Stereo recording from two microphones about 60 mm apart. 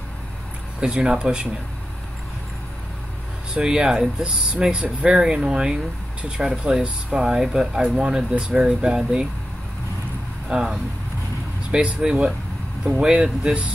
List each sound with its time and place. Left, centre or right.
0.7 s speech: centre
3.5 s speech: centre
10.5 s speech: centre